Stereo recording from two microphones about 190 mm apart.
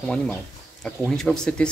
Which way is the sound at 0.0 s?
5° left (ahead or behind).